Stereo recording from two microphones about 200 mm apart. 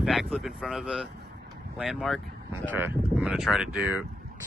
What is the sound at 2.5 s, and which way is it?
Speech, 10° right (ahead or behind).